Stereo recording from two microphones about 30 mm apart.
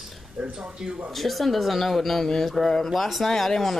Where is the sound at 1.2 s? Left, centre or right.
Centre.